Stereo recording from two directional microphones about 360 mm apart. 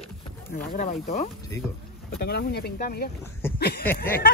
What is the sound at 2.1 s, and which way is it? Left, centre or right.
Speech, left.